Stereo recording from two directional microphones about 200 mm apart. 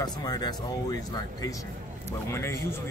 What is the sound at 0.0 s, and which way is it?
Speech, 20° left (ahead or behind).